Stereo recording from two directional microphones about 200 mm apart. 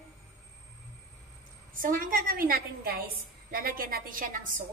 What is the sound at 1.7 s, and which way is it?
A woman's voice, 45° right (ahead or behind).